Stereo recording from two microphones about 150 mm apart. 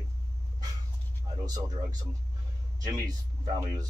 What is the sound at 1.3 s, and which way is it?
Speech, 25° right (ahead or behind).